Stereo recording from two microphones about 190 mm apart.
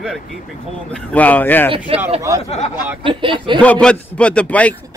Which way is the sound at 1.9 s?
30° right (ahead or behind).